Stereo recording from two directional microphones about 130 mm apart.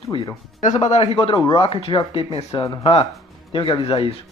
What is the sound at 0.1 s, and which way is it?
Speech, 45° left (ahead or behind).